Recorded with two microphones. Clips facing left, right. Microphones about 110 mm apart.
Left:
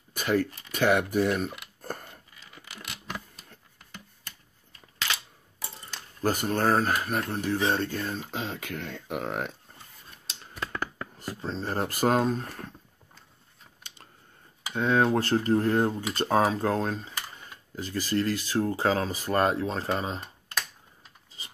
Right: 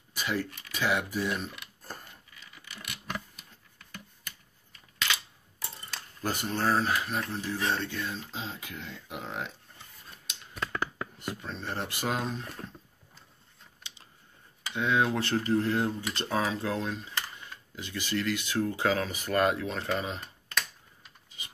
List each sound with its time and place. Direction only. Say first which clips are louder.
0.1 s a sound: left 6 dB; 50° left (ahead or behind)
0.7 s speech: left 5 dB; 55° left (ahead or behind)
1.8 s a sound: left 9 dB; 50° left (ahead or behind)
6.2 s speech: left 4 dB; 45° left (ahead or behind)
7.7 s speech: left 4 dB; 45° left (ahead or behind)
8.3 s speech: left 5 dB; 65° left (ahead or behind)
10.3 s typing: left 2 dB; 30° left (ahead or behind)
11.1 s speech: left 6 dB; 35° left (ahead or behind)
14.7 s speech: left 4 dB; 45° left (ahead or behind)
21.4 s livestock: even; 35° left (ahead or behind)